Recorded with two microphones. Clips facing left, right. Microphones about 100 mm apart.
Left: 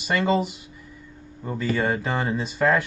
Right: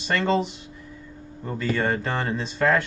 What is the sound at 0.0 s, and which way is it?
Speech, 10° left (ahead or behind).